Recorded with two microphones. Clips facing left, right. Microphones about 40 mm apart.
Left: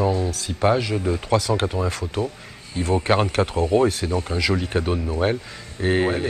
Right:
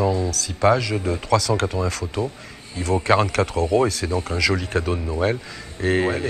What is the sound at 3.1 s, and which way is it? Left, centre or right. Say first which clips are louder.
Speech: right 3 dB; right.